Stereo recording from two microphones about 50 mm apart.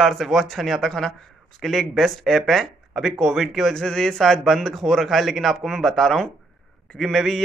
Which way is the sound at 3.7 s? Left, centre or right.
Centre.